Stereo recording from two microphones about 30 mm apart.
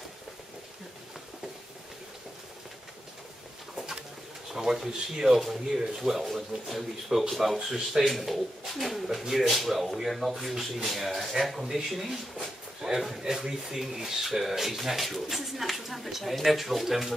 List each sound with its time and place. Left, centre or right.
3.7 s bird: centre
4.6 s speech: centre
8.2 s speech: centre
12.4 s a sound: right
13.2 s speech: centre